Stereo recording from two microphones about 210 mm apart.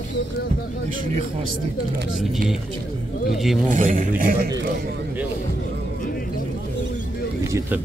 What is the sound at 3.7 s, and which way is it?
Speech, 40° right (ahead or behind).